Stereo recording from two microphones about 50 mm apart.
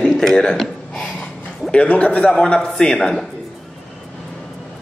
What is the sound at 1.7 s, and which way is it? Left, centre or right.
A man's voice, left.